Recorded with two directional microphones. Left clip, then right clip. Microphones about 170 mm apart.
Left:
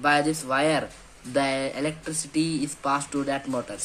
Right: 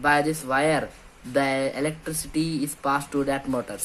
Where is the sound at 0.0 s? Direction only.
10° right (ahead or behind).